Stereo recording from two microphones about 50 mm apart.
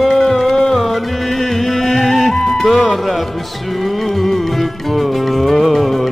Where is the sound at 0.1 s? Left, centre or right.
Centre.